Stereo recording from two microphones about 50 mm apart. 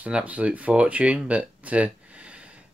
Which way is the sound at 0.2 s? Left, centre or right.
Right.